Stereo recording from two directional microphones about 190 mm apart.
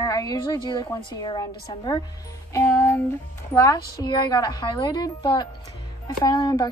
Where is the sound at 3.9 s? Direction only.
25° left (ahead or behind).